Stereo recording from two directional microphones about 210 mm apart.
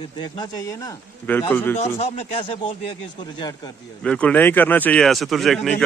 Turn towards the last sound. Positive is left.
turn(degrees=0)  # may be behind; listen again after turning